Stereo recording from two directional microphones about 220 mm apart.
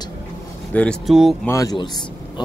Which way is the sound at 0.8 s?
Centre (ahead or behind).